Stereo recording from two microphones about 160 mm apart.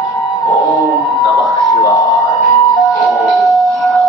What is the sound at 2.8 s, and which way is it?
Music, centre (ahead or behind).